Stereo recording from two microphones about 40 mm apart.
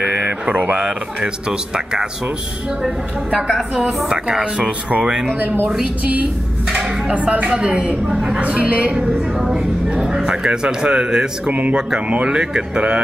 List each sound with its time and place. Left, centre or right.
0.0 s a sound: right
0.7 s speech: right
5.2 s speech: right
6.7 s music: right
7.4 s speech: right
8.4 s a woman's voice: right
10.0 s speech: centre